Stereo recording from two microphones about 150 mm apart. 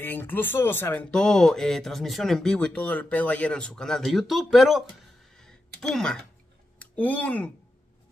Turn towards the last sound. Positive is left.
turn(degrees=10)  # may be behind; listen again after turning